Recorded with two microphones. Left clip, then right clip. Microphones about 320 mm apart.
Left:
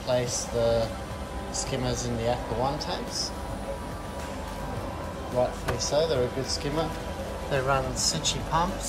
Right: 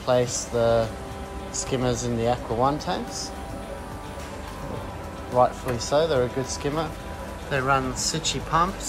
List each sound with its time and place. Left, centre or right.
0.0 s speech: centre
2.2 s speech: centre
5.3 s speech: centre